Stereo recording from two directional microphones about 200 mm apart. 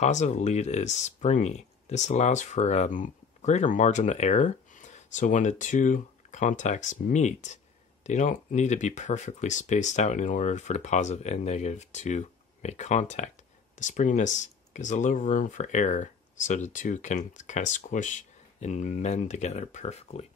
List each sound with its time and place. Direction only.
0.0 s speech: 35° left (ahead or behind)